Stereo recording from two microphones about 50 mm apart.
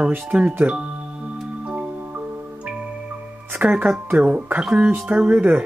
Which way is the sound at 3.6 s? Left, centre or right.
Right.